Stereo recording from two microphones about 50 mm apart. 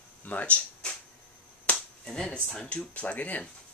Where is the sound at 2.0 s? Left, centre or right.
Centre.